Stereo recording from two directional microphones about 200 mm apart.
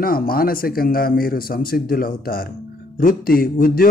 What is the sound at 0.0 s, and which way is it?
A man's voice, 45° left (ahead or behind).